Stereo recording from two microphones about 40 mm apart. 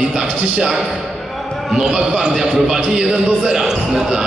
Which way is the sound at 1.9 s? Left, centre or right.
Centre.